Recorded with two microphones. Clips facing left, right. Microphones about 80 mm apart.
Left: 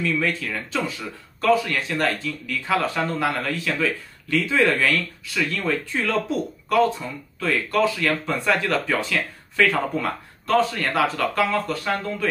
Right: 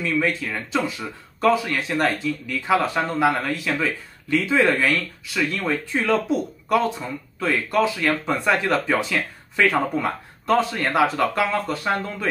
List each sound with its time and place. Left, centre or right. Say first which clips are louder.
0.0 s speech: right 1 dB; centre